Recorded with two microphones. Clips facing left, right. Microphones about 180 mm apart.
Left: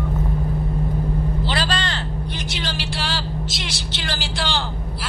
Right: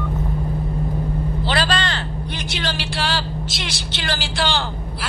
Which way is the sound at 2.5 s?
65° right (ahead or behind).